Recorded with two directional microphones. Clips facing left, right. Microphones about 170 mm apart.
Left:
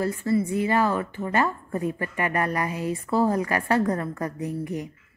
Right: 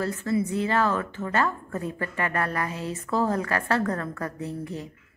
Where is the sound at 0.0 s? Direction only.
10° left (ahead or behind).